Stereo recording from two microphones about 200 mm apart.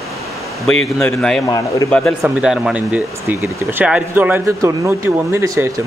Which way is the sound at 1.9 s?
Centre (ahead or behind).